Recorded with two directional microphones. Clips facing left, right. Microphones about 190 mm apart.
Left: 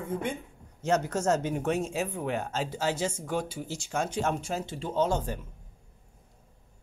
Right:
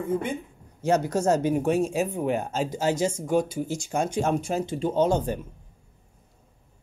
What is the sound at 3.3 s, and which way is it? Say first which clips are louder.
Speech: right 8 dB; 15° right (ahead or behind).